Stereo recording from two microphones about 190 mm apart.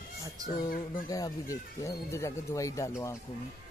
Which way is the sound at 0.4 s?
20° right (ahead or behind).